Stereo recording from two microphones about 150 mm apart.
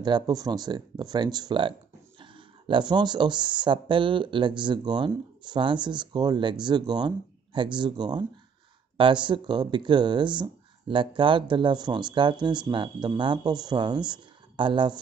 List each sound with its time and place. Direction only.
0.0 s speech: 25° right (ahead or behind)